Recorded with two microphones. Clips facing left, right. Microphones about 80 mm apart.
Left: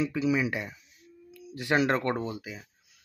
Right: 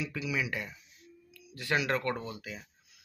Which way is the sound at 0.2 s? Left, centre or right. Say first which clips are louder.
Left 5 dB; left.